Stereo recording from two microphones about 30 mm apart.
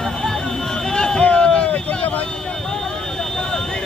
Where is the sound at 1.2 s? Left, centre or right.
Left.